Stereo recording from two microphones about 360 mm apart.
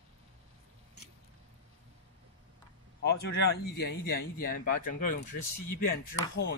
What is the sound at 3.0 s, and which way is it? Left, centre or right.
A man's voice, left.